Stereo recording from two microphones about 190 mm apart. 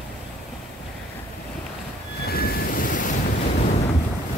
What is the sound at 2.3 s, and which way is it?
Waves, 55° left (ahead or behind).